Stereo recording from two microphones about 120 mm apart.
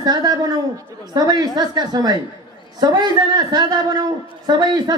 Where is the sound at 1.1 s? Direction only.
30° right (ahead or behind).